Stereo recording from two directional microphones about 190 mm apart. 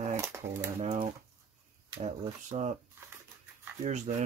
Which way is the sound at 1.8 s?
35° right (ahead or behind).